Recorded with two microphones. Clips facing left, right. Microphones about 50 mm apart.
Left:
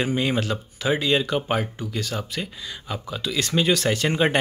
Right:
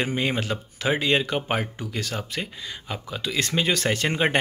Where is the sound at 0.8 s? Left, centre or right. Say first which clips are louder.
Left 1 dB; right.